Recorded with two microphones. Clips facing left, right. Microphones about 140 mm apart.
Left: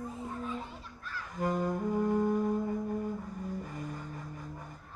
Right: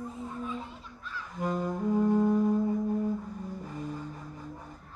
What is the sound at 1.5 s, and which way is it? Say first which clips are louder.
Music: right 2 dB; centre (ahead or behind).